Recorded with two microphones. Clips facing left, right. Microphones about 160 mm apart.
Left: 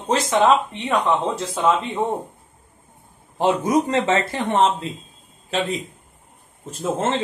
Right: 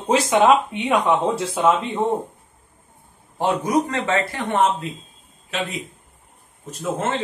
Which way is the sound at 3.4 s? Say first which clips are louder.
Left 1 dB; 25° left (ahead or behind).